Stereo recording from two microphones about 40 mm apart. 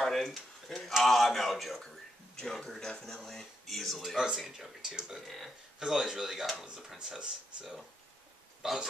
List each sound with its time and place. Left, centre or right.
0.0 s a sound: centre
0.7 s tick-tock: centre
1.0 s a man's voice: centre
4.5 s speech: centre
5.2 s speech: centre
6.6 s speech: right
8.6 s speech: centre